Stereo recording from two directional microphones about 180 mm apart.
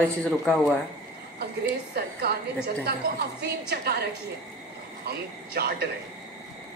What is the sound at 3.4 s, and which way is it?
Speech, 60° right (ahead or behind).